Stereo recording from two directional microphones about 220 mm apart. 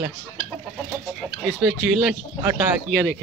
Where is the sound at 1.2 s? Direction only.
Centre (ahead or behind).